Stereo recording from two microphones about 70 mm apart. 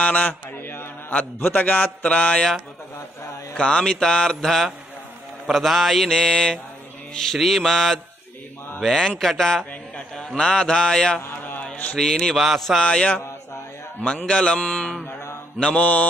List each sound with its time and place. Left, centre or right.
0.0 s a man's voice: left
3.5 s a man's voice: centre
5.5 s mantra: centre
10.1 s a man's voice: centre
11.2 s a sound: left
11.6 s a man's voice: centre
12.4 s mantra: centre
12.8 s a man's voice: centre
15.6 s mantra: centre